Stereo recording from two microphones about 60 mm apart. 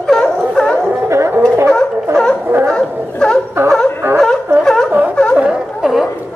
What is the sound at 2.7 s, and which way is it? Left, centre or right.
Dog, centre.